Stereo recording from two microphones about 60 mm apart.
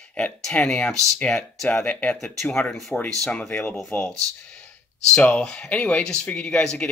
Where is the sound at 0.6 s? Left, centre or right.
Centre.